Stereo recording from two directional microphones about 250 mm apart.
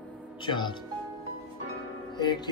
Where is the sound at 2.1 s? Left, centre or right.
Centre.